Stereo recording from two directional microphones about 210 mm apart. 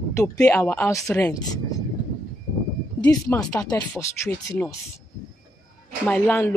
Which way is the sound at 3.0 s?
15° left (ahead or behind).